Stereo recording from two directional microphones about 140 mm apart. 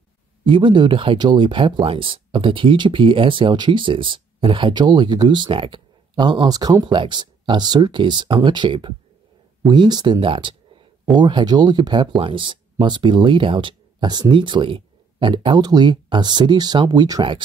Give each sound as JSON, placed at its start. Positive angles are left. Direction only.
{"t": 0.5, "sound": "speech", "side_deg": -35}